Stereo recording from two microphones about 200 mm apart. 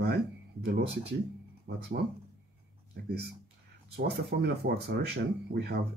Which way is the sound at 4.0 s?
55° right (ahead or behind).